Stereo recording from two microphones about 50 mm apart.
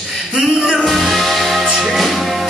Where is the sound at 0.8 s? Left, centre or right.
Centre.